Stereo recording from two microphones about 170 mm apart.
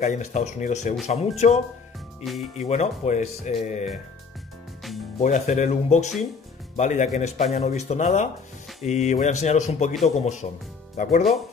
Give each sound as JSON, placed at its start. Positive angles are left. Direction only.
{"t": 0.0, "sound": "speech", "side_deg": 40}
{"t": 5.2, "sound": "speech", "side_deg": 45}